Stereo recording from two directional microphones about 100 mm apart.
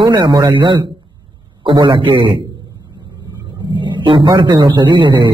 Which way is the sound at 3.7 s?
55° right (ahead or behind).